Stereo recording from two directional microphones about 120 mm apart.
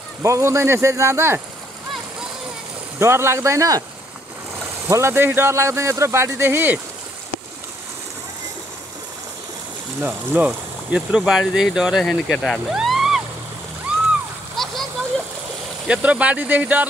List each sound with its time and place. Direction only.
0.2 s speech: 25° right (ahead or behind)
3.0 s speech: 20° right (ahead or behind)
4.8 s speech: 20° right (ahead or behind)
9.9 s speech: 15° right (ahead or behind)
14.6 s a sound: centre (ahead or behind)
15.9 s speech: 10° right (ahead or behind)